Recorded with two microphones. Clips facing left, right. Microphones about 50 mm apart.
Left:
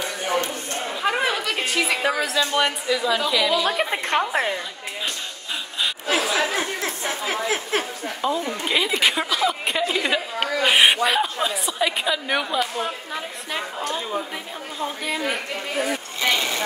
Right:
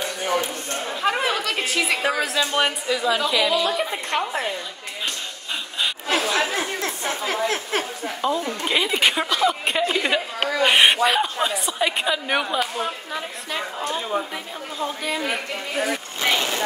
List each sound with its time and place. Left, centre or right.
1.0 s a woman's voice: centre
3.6 s a woman's voice: left
5.8 s speech: centre